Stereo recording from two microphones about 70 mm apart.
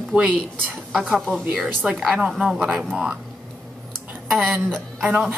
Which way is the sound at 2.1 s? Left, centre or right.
Centre.